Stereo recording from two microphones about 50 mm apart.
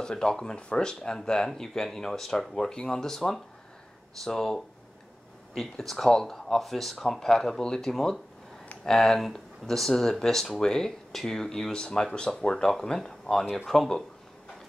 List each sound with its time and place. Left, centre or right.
0.0 s speech: centre